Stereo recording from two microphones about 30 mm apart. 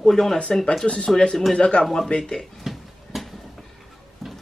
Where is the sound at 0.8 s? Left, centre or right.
Left.